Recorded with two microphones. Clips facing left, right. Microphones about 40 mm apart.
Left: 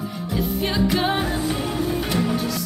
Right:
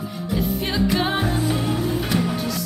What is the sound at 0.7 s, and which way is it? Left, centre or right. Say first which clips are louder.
Music: left 1 dB; centre.